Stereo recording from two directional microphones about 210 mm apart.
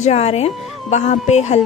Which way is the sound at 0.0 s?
30° left (ahead or behind).